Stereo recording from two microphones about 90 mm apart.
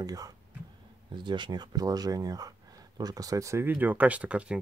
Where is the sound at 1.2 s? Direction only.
60° right (ahead or behind); by 3.7 s 35° right (ahead or behind).